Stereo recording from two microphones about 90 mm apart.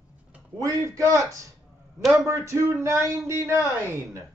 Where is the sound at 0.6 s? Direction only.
35° right (ahead or behind).